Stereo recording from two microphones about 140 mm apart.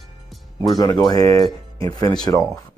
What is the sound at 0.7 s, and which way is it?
Speech, 30° left (ahead or behind).